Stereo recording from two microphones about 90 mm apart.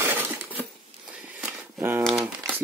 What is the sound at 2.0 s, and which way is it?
Crumpling, 5° left (ahead or behind).